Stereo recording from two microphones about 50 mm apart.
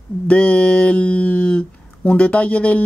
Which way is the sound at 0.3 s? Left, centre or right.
Left.